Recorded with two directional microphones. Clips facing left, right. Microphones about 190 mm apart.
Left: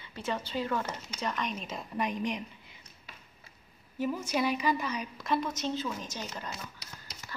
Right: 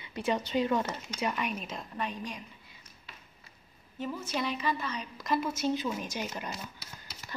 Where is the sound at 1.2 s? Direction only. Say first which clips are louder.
Right 1 dB; 10° right (ahead or behind).